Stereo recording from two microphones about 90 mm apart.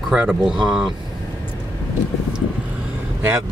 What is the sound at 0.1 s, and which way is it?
Speech, 10° right (ahead or behind).